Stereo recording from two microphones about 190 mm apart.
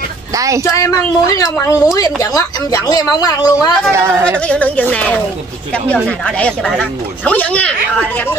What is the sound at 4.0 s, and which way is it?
Speech, 15° right (ahead or behind).